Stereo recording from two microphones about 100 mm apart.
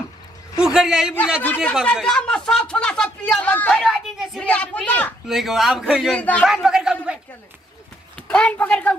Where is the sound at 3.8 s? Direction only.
Centre (ahead or behind).